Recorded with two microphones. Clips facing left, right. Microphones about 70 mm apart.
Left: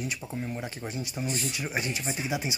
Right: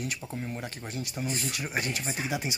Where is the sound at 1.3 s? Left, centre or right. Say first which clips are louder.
Left 1 dB; right.